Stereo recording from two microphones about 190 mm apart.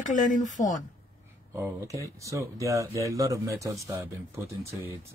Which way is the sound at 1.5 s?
15° right (ahead or behind).